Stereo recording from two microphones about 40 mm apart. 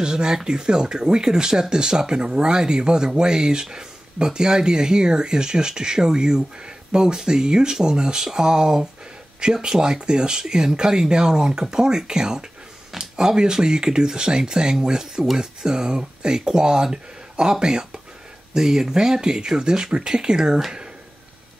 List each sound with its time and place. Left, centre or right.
0.0 s speech: centre